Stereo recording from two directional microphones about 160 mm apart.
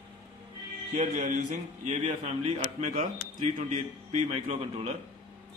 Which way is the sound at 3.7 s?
45° right (ahead or behind).